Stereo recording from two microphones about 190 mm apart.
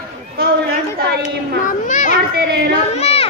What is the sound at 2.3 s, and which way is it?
Speech, 55° right (ahead or behind).